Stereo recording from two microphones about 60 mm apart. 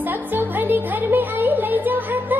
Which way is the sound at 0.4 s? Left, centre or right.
Right.